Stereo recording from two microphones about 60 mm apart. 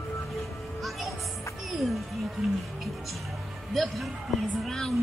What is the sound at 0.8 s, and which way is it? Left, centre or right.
Music, centre.